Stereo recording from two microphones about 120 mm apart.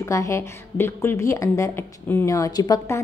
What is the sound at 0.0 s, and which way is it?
A woman's voice, 25° left (ahead or behind).